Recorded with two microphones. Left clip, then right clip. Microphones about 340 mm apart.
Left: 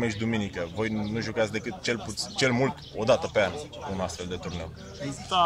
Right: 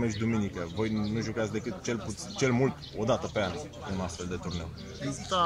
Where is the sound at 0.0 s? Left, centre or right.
Left.